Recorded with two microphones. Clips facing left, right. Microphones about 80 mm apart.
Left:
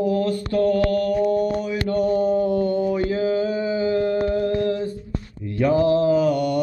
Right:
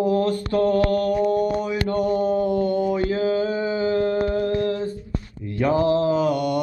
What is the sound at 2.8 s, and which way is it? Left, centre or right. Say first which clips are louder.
Mantra: even; right.